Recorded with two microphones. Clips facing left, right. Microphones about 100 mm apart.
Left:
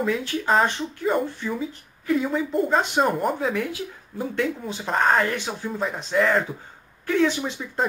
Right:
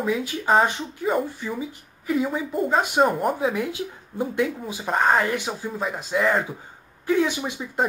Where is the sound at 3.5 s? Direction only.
20° right (ahead or behind).